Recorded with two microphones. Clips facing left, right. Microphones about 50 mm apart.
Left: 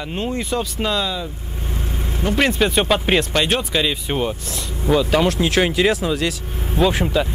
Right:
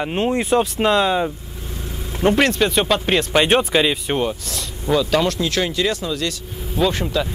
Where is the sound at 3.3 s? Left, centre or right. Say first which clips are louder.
Right 4 dB; centre.